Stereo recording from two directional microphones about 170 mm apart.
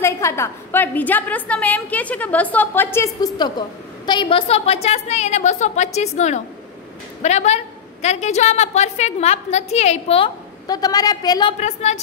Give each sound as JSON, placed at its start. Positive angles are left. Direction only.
{"t": 0.0, "sound": "a woman's voice", "side_deg": 15}
{"t": 10.7, "sound": "a woman's voice", "side_deg": 20}
{"t": 11.6, "sound": "a woman's voice", "side_deg": 40}